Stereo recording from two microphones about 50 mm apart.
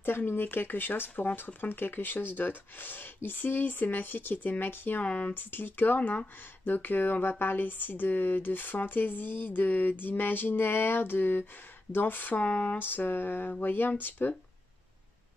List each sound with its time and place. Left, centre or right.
0.3 s speech: left
5.0 s speech: left
5.3 s speech: left
12.7 s speech: left